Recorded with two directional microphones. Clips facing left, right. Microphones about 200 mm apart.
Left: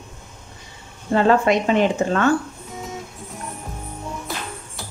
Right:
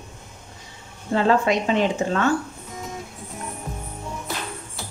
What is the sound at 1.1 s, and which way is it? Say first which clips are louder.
Speech: left 3 dB; 55° left (ahead or behind).